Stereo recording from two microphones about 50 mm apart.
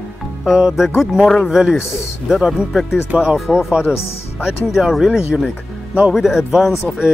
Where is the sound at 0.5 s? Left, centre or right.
Centre.